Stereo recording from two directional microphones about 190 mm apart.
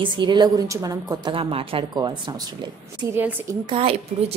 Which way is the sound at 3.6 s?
30° right (ahead or behind).